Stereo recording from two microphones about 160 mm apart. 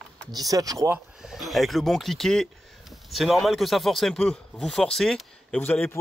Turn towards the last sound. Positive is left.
turn(degrees=10)  # may be behind; listen again after turning